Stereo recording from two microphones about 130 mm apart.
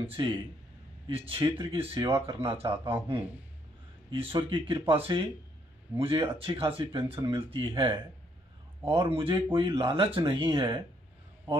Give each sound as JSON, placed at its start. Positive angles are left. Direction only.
{"t": 0.0, "sound": "speech", "side_deg": -40}